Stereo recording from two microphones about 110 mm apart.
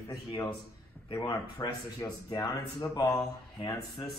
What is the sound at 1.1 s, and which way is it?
Speech, 45° left (ahead or behind).